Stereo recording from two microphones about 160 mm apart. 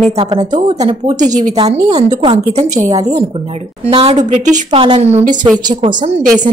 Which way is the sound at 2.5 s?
45° right (ahead or behind).